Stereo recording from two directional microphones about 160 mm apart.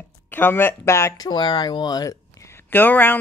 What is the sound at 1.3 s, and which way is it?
Speech, 25° left (ahead or behind).